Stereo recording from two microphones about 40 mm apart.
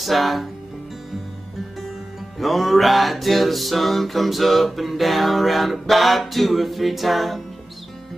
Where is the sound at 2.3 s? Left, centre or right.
Centre.